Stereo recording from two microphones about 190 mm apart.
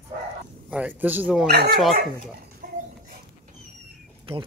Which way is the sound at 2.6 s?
55° right (ahead or behind).